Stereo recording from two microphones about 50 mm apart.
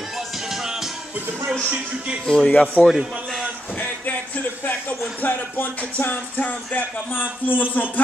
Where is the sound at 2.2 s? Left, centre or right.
Centre.